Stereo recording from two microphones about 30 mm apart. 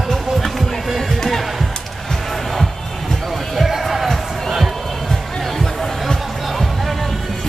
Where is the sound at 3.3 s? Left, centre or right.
Centre.